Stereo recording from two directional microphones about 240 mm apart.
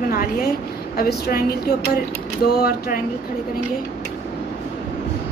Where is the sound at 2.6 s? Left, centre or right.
Left.